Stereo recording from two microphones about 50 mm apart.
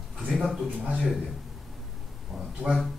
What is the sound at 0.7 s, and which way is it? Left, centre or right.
Speech, centre.